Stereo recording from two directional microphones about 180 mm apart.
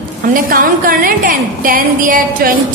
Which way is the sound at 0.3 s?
50° right (ahead or behind).